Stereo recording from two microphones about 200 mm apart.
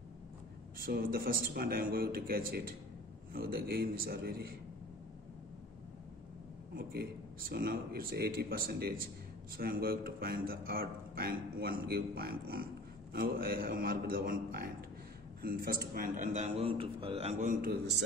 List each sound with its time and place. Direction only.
0.8 s a man's voice: 45° right (ahead or behind)
6.7 s a man's voice: 50° right (ahead or behind)